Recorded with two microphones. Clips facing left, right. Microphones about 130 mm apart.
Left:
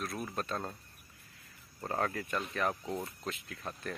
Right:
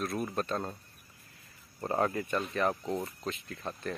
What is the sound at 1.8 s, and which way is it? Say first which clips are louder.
Speech: right 4 dB; 15° right (ahead or behind).